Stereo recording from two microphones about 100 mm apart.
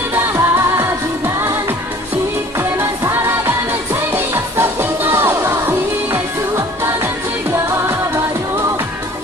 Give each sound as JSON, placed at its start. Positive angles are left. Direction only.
{"t": 0.1, "sound": "music", "side_deg": -25}
{"t": 2.8, "sound": "music", "side_deg": -25}